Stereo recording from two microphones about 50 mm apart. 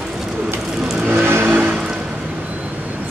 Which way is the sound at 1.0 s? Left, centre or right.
Right.